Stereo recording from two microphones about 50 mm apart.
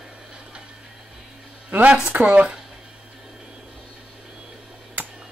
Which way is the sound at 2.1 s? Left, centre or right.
Right.